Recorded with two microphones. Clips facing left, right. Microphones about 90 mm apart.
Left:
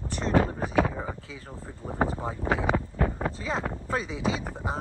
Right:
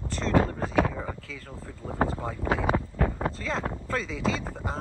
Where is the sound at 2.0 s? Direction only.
20° left (ahead or behind).